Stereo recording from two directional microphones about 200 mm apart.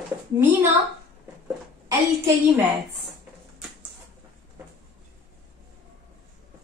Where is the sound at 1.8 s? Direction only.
15° right (ahead or behind).